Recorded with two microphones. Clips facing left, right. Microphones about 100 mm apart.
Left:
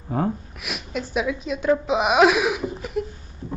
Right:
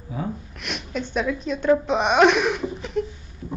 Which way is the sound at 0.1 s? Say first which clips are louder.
Left 6 dB; 50° left (ahead or behind).